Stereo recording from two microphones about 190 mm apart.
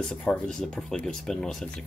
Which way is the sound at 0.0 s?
Centre (ahead or behind).